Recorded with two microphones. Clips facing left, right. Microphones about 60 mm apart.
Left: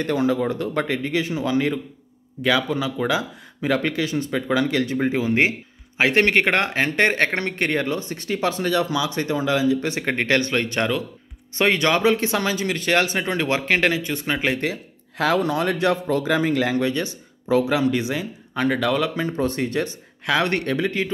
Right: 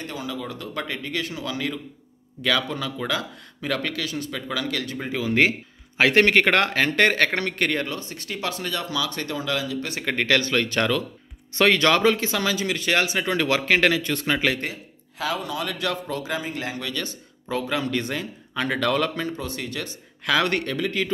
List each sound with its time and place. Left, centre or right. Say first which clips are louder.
0.0 s speech: left 11 dB; left
2.4 s speech: left 4 dB; centre
12.2 s speech: left 2 dB; left
14.0 s speech: even; centre
14.6 s speech: left 6 dB; left
16.7 s speech: left 8 dB; left; by 19.1 s centre
19.2 s speech: left 7 dB; left